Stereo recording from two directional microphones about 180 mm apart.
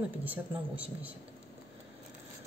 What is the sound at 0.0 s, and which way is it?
Speech, 10° right (ahead or behind).